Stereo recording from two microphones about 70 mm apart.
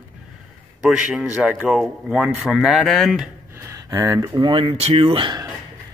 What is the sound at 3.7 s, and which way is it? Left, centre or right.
Speech, right.